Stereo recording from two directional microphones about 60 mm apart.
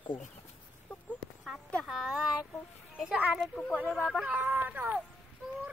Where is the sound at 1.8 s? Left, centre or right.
Centre.